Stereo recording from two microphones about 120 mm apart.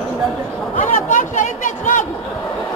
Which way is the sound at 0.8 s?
90° left.